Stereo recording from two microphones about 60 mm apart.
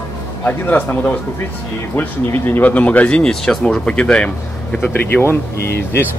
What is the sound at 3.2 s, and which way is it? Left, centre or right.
Speech, centre.